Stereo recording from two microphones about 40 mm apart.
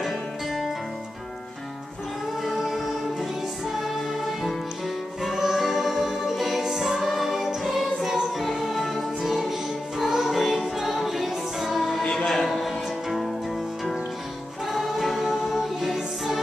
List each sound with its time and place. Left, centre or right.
0.0 s music: centre
2.4 s music: centre
12.0 s music: centre
12.3 s music: centre
14.7 s music: centre